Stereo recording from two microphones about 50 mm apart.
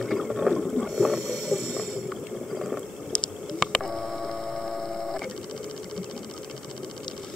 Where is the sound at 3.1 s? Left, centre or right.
Centre.